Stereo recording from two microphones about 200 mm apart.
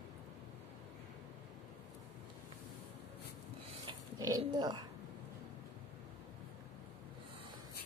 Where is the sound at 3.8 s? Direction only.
15° right (ahead or behind).